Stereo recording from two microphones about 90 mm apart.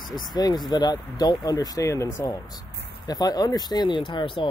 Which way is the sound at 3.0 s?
45° left (ahead or behind).